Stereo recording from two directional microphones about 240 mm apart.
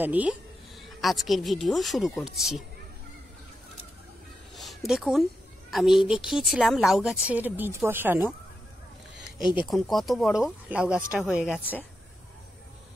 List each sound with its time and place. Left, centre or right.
0.0 s a woman's voice: centre
4.6 s a woman's voice: centre
9.4 s speech: centre
9.7 s a woman's voice: centre